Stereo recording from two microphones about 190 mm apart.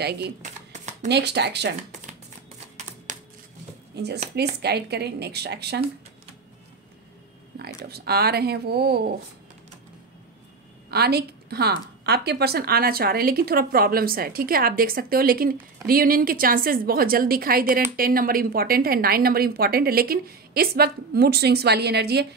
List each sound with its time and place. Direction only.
0.4 s shuffling cards: 40° right (ahead or behind)
1.0 s speech: 60° right (ahead or behind)
1.8 s shuffling cards: 40° right (ahead or behind)
3.1 s a sound: 40° right (ahead or behind)
3.9 s speech: 60° right (ahead or behind)
7.5 s speech: 60° right (ahead or behind)
10.9 s a woman's voice: 55° right (ahead or behind)